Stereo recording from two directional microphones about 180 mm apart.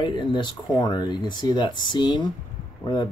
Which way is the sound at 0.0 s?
25° left (ahead or behind).